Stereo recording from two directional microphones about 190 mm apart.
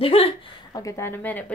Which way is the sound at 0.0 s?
30° left (ahead or behind).